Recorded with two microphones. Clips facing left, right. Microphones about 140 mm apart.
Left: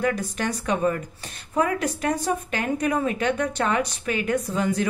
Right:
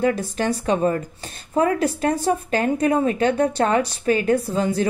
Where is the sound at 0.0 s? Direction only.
30° right (ahead or behind).